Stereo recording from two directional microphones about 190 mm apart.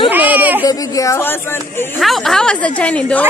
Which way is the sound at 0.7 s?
15° left (ahead or behind).